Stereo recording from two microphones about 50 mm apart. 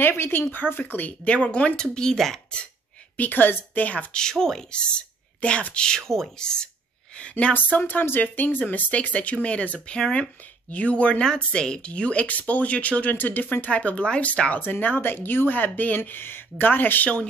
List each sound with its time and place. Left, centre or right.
0.0 s speech: left
1.2 s speech: left; by 2.4 s centre
3.2 s speech: left
4.2 s speech: centre
5.9 s speech: centre
7.8 s speech: left
13.7 s speech: left
14.6 s speech: left